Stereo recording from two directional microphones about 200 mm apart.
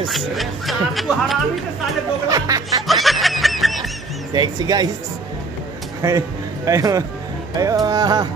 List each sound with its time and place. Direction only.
0.1 s speech: centre (ahead or behind)
2.2 s music: 15° right (ahead or behind)
2.9 s snicker: centre (ahead or behind)
4.3 s music: 20° right (ahead or behind)
6.0 s a man's voice: 15° right (ahead or behind)
7.5 s music: 20° right (ahead or behind)